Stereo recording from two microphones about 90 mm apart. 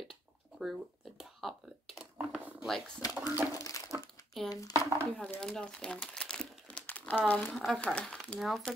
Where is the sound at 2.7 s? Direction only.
Centre (ahead or behind).